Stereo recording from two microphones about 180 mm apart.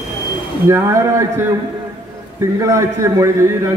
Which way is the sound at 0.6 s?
15° right (ahead or behind).